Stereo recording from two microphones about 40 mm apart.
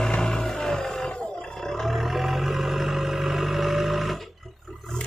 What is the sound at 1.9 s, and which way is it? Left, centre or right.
Vehicle, centre.